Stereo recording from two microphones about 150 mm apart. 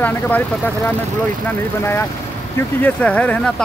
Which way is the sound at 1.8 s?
15° left (ahead or behind).